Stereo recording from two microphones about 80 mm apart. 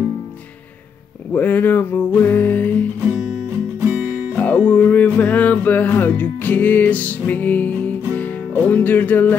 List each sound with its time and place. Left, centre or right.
1.3 s music: left
4.4 s music: centre